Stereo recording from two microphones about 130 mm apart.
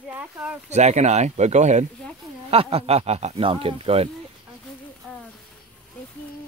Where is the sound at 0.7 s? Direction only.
60° right (ahead or behind).